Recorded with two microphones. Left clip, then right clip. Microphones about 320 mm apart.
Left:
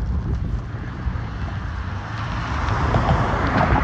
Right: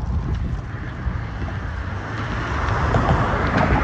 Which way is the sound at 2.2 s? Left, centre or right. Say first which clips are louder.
Right 1 dB; centre.